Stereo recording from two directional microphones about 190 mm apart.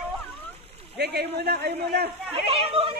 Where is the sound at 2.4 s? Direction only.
30° right (ahead or behind).